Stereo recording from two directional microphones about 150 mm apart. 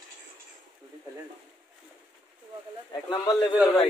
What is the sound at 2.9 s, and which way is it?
Speech, 25° left (ahead or behind).